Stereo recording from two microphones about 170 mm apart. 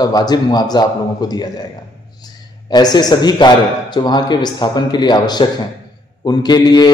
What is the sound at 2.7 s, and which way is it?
A man's voice, 25° left (ahead or behind).